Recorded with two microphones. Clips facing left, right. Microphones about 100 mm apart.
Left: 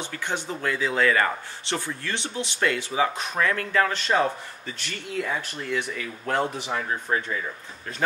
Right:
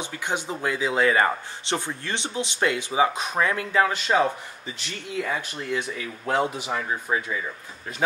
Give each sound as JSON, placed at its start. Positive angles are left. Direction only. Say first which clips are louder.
{"t": 0.0, "sound": "speech", "louder": "right 1 dB", "side_deg": -15}